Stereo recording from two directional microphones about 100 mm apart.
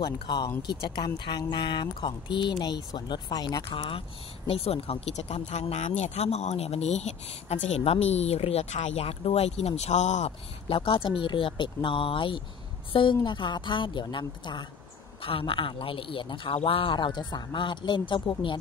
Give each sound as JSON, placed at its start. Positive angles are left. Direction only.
{"t": 0.6, "sound": "speech", "side_deg": 50}
{"t": 3.7, "sound": "a man's voice", "side_deg": 60}
{"t": 4.5, "sound": "speech", "side_deg": 75}
{"t": 15.2, "sound": "a man's voice", "side_deg": 65}